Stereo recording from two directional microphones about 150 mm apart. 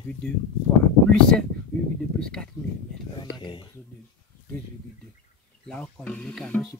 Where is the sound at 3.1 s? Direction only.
30° left (ahead or behind).